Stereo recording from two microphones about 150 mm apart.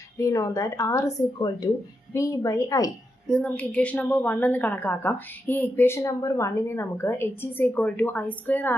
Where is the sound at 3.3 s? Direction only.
10° left (ahead or behind).